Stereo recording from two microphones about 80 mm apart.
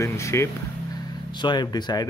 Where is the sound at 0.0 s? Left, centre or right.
Left.